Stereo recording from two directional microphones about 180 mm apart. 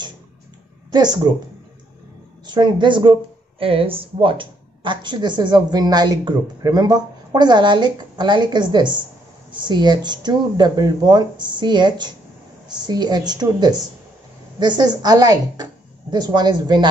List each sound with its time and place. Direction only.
0.9 s speech: 25° right (ahead or behind)
2.4 s speech: 25° right (ahead or behind)